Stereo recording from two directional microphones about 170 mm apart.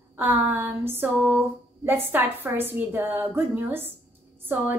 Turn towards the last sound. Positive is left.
turn(degrees=-10)  # may be behind; listen again after turning